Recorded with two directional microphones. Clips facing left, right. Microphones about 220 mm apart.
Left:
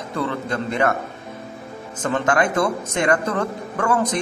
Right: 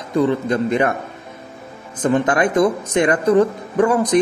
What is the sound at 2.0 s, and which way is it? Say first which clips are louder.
Speech: right 4 dB; 20° right (ahead or behind).